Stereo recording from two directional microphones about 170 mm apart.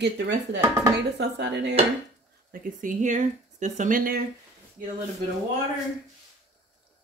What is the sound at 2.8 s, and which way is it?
A woman's voice, 50° right (ahead or behind).